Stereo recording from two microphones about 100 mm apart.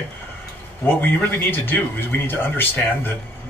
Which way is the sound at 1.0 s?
20° left (ahead or behind).